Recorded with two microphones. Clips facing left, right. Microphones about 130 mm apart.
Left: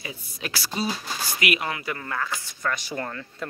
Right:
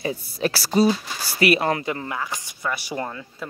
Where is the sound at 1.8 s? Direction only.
20° right (ahead or behind).